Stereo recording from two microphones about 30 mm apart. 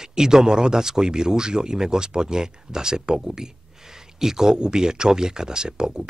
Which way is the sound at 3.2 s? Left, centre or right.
Centre.